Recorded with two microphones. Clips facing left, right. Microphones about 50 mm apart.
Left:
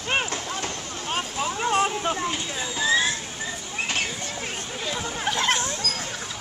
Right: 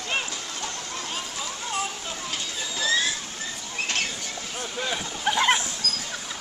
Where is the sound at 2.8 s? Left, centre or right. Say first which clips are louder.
Left 3 dB; centre.